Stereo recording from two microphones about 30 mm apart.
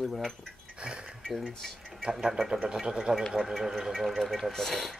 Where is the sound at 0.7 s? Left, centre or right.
Right.